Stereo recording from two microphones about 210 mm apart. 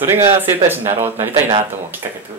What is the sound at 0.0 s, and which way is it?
Speech, 10° right (ahead or behind).